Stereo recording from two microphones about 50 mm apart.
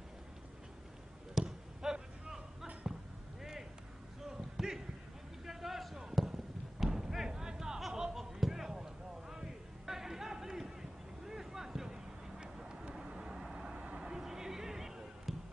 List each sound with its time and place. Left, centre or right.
1.4 s basketball bounce: centre
4.2 s a sound: centre
6.1 s thump: centre